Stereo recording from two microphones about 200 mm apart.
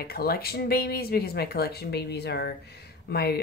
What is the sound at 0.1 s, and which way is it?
Speech, 50° left (ahead or behind).